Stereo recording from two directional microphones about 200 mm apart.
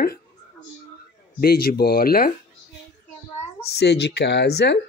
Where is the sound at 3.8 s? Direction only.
55° left (ahead or behind).